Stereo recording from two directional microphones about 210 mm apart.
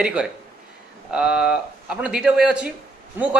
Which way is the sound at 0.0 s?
5° right (ahead or behind).